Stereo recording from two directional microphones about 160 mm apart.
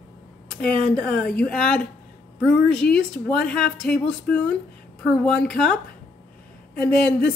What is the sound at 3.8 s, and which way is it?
Speech, 5° left (ahead or behind).